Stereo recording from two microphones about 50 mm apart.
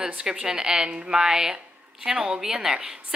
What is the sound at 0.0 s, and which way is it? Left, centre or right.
A woman's voice, centre.